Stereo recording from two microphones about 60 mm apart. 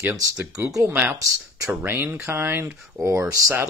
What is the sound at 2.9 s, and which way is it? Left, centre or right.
Speech, right.